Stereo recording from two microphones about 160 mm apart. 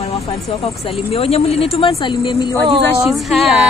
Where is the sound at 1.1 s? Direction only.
40° left (ahead or behind).